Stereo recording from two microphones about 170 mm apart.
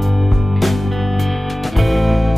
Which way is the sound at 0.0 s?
Centre (ahead or behind).